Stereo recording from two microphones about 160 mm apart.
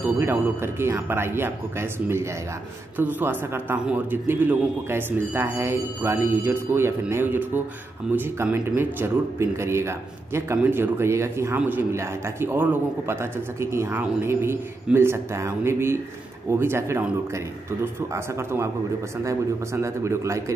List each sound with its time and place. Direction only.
0.0 s speech: 15° right (ahead or behind)
18.1 s a man's voice: 15° right (ahead or behind)